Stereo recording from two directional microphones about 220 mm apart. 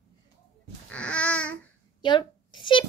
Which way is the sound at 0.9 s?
5° left (ahead or behind).